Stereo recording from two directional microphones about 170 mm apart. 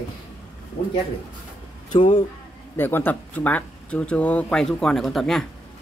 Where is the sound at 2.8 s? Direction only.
10° left (ahead or behind).